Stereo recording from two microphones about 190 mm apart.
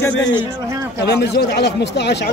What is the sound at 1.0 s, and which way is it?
Speech, 60° left (ahead or behind).